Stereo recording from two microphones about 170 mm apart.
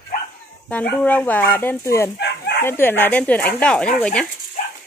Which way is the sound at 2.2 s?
75° left (ahead or behind).